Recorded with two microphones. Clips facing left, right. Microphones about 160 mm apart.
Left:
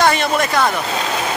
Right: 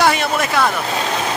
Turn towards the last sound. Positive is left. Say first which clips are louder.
# left 1 dB
turn(degrees=-5)  # may be behind; listen again after turning